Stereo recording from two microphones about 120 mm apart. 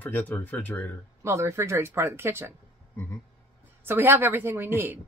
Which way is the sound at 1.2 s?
25° right (ahead or behind).